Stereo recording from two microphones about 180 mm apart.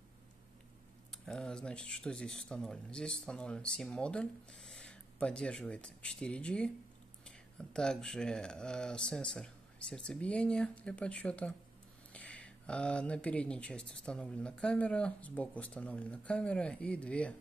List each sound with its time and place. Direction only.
1.1 s speech: 5° left (ahead or behind)